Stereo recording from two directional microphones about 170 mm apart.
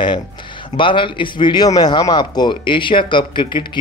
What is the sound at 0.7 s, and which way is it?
A man's voice, 30° left (ahead or behind).